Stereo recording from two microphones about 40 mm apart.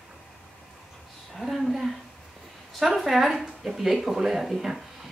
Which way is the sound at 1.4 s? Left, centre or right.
Centre.